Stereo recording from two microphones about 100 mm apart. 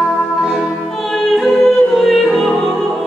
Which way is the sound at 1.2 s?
Centre (ahead or behind).